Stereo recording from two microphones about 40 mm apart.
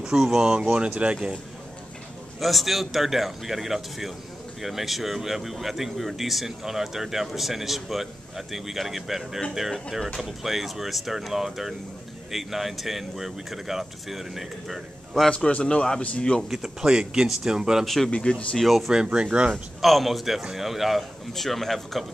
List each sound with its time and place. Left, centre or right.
0.0 s speech: centre
2.4 s speech: centre
9.8 s speech: centre
15.3 s a man's voice: left
16.4 s speech: centre
17.8 s speech: centre
18.1 s a man's voice: left
18.6 s speech: centre
18.9 s speech: right
19.8 s speech: centre
21.4 s speech: centre